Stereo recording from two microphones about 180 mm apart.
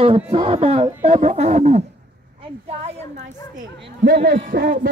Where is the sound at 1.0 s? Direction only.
40° right (ahead or behind).